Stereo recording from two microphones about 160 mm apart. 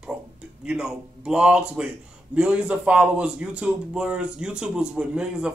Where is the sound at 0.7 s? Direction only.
5° right (ahead or behind).